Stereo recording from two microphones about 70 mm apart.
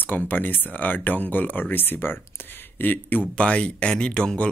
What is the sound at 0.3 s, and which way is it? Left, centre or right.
Speech, left.